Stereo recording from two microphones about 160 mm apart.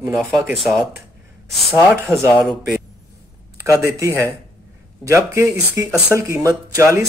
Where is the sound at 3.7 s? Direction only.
20° right (ahead or behind).